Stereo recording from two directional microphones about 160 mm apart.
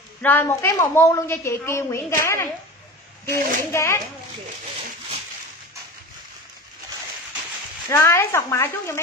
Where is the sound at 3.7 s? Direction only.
15° left (ahead or behind).